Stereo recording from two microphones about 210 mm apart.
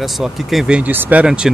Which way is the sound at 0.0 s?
Centre (ahead or behind).